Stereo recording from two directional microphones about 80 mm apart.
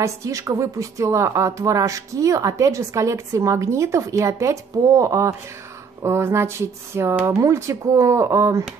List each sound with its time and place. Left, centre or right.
0.0 s a woman's voice: right